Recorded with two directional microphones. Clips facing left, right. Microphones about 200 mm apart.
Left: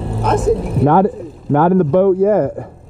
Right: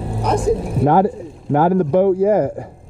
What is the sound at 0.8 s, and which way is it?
Speech, 30° right (ahead or behind).